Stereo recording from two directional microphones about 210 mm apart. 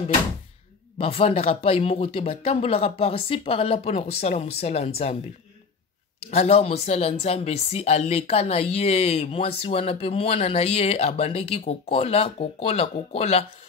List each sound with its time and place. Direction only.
0.9 s speech: 30° left (ahead or behind)
6.3 s speech: 30° left (ahead or behind)